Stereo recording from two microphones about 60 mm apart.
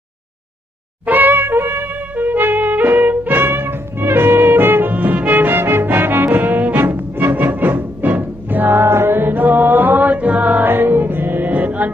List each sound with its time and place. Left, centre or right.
1.0 s music: right